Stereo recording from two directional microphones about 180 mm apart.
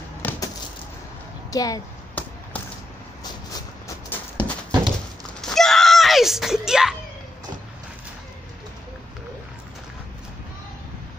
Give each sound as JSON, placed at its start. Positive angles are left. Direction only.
{"t": 1.5, "sound": "a sound", "side_deg": 20}
{"t": 3.5, "sound": "horse", "side_deg": 15}
{"t": 5.4, "sound": "screaming", "side_deg": 0}